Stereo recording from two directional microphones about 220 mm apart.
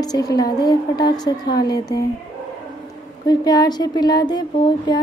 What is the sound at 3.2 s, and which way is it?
Speech, 15° left (ahead or behind).